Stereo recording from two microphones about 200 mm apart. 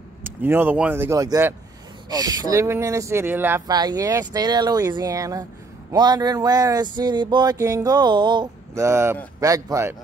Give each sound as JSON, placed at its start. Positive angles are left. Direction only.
{"t": 0.2, "sound": "speech", "side_deg": -10}
{"t": 5.9, "sound": "a sound", "side_deg": -20}
{"t": 9.4, "sound": "speech", "side_deg": -15}